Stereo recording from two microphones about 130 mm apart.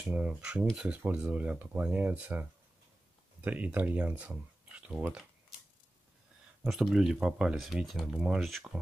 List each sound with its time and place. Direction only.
0.0 s speech: 10° right (ahead or behind)
6.6 s speech: 5° right (ahead or behind)